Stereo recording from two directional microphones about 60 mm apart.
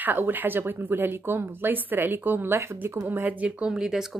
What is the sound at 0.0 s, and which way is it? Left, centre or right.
Speech, right.